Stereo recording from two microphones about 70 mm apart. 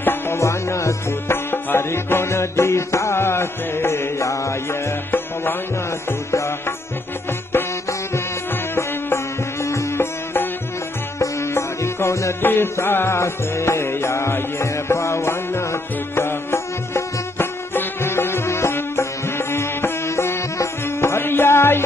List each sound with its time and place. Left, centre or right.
0.0 s music: left
0.4 s music: left
1.5 s music: left
5.1 s music: left
8.7 s music: left
9.9 s music: left
11.1 s music: left
12.4 s music: left